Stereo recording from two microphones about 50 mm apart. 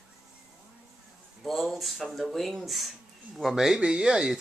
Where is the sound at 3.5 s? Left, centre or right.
Centre.